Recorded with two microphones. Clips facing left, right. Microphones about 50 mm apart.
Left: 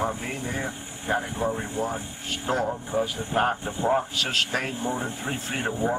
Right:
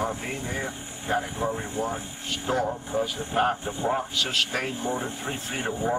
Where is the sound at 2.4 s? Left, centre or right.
Left.